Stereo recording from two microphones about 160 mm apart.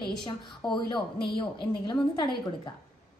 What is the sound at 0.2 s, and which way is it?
A woman's voice, 30° left (ahead or behind).